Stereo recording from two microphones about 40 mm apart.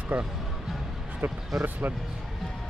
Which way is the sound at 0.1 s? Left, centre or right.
Right.